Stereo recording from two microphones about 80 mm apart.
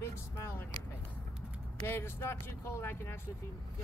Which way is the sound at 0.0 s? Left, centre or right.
Left.